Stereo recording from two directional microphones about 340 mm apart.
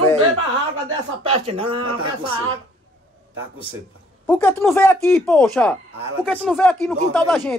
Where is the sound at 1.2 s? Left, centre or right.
Centre.